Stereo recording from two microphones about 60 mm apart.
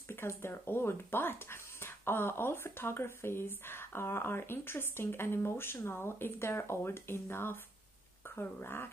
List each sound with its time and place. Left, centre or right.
0.1 s speech: left